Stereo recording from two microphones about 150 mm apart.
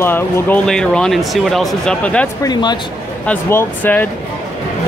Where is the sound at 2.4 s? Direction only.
30° left (ahead or behind).